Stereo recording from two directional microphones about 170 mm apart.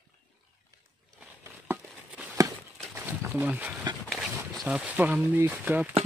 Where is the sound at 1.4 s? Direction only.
15° right (ahead or behind).